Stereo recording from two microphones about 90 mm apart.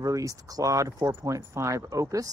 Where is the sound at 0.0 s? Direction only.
40° right (ahead or behind).